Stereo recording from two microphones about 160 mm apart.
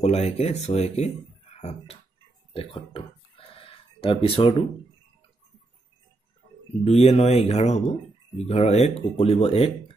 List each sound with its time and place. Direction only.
0.0 s speech: 40° left (ahead or behind)
2.5 s a sound: 35° left (ahead or behind)
6.8 s speech: 40° left (ahead or behind)